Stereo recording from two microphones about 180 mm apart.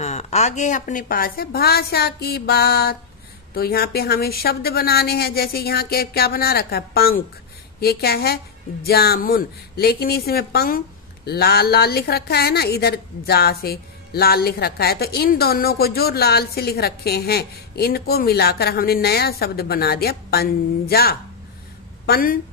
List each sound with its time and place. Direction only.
0.0 s a woman's voice: 40° left (ahead or behind); by 22.4 s 55° left (ahead or behind)